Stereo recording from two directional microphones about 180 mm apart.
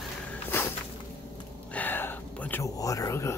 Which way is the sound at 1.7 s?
10° left (ahead or behind).